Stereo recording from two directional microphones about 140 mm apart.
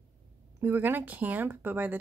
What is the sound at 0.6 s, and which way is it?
Speech, 15° right (ahead or behind).